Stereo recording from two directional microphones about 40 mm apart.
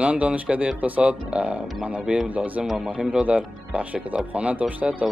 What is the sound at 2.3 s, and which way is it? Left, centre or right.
Speech, right.